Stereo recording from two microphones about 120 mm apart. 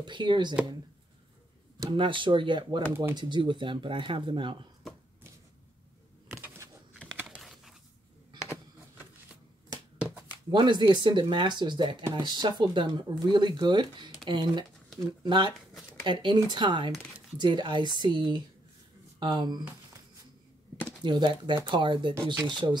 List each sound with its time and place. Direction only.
0.0 s speech: 40° right (ahead or behind)
1.9 s speech: 45° right (ahead or behind)
7.2 s a sound: centre (ahead or behind)
10.5 s speech: 40° right (ahead or behind)
14.9 s a sound: centre (ahead or behind)
15.2 s speech: 40° right (ahead or behind)
21.0 s speech: 40° right (ahead or behind)